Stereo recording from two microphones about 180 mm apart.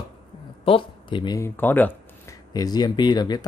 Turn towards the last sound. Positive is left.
turn(degrees=20)  # may be behind; listen again after turning